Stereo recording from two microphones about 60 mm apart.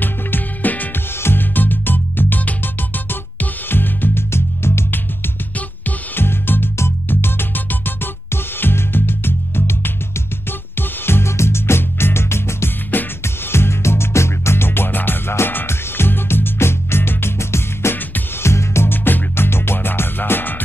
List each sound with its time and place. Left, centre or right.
0.0 s music: left